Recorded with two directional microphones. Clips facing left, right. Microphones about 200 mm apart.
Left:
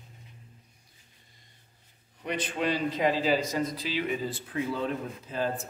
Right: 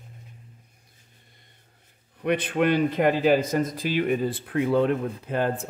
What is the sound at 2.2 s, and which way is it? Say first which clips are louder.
Speech: right 8 dB; 60° right (ahead or behind).